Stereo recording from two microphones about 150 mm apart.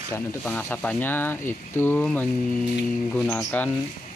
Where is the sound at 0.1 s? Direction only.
15° left (ahead or behind).